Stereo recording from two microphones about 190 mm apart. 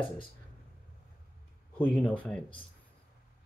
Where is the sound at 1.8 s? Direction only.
5° left (ahead or behind).